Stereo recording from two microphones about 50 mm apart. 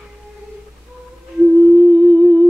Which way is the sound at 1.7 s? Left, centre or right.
Centre.